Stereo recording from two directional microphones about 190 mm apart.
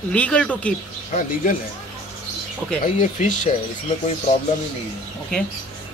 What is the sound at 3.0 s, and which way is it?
Speech, 40° left (ahead or behind).